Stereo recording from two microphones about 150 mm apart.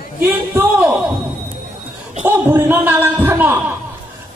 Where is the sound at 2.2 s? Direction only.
15° right (ahead or behind).